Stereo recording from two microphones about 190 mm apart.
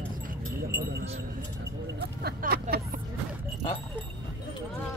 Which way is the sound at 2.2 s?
55° right (ahead or behind).